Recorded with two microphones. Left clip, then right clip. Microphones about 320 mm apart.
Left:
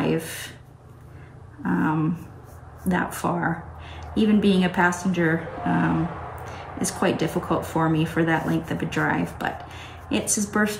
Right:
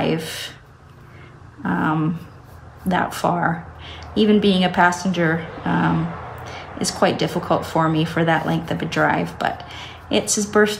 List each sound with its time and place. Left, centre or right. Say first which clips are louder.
0.0 s speech: right 3 dB; right
1.6 s a sound: right 3 dB; right
2.9 s speech: right 5 dB; right